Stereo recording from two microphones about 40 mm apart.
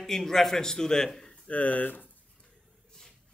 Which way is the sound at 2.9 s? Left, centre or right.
Centre.